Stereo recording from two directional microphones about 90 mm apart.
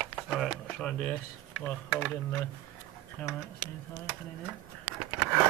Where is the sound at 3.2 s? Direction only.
20° left (ahead or behind).